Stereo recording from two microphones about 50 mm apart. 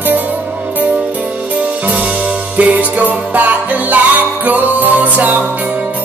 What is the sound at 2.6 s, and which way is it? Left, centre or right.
Music, right.